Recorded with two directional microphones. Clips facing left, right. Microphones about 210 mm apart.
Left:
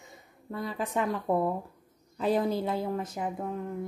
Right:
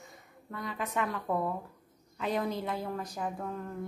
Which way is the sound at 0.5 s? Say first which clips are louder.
Left 4 dB; 30° left (ahead or behind).